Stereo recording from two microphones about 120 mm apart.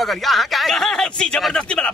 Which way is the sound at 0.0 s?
Centre (ahead or behind).